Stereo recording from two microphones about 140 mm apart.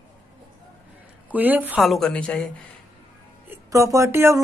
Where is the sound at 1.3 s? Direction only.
10° right (ahead or behind).